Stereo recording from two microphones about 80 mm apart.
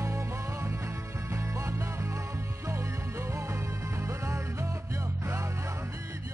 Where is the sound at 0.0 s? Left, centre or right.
Right.